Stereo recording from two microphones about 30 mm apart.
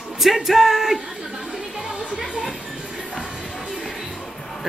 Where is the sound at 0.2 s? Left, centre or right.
Centre.